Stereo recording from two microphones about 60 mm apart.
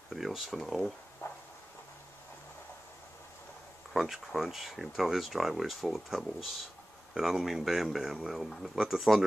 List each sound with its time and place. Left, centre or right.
0.1 s speech: centre
1.2 s a sound: left
3.9 s speech: centre